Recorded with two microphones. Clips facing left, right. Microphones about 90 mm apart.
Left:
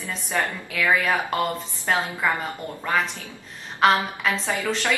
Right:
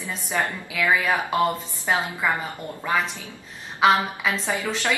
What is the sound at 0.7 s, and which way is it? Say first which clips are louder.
A woman's voice: even; 5° right (ahead or behind).